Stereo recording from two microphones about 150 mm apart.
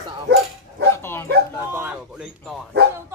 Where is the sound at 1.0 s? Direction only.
15° left (ahead or behind).